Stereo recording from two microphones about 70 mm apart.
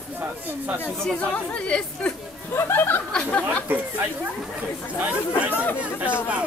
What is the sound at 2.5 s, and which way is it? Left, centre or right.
Speech, left.